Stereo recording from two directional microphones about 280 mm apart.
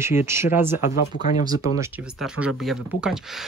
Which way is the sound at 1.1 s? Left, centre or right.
Left.